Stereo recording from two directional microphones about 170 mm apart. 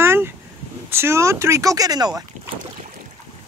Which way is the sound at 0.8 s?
15° right (ahead or behind).